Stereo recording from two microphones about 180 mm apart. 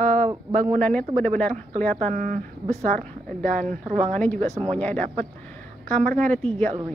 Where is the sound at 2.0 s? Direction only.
45° right (ahead or behind).